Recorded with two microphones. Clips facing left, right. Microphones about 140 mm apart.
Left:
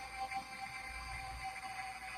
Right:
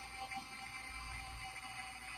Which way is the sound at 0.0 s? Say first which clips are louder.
Left 5 dB; 55° left (ahead or behind).